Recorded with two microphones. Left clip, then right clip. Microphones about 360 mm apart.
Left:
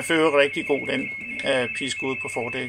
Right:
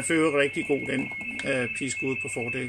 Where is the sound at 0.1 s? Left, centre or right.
Centre.